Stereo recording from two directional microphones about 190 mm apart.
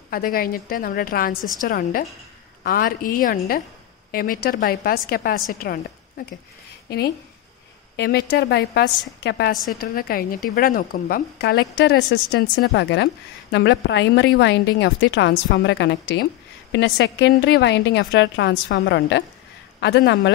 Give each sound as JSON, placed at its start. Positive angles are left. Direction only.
{"t": 0.1, "sound": "a woman's voice", "side_deg": 50}
{"t": 7.9, "sound": "a woman's voice", "side_deg": 60}